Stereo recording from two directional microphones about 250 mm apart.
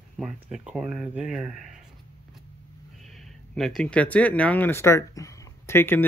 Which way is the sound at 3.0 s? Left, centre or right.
Centre.